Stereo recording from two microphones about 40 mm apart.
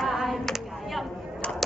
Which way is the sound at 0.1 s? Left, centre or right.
Centre.